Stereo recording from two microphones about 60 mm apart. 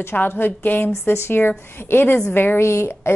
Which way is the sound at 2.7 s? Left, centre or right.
Left.